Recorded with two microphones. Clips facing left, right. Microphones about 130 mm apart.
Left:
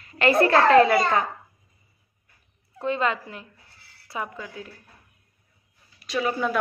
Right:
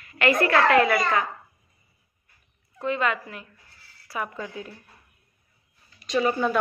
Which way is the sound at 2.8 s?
30° left (ahead or behind).